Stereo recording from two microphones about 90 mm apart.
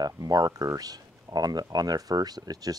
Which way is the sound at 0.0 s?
45° right (ahead or behind).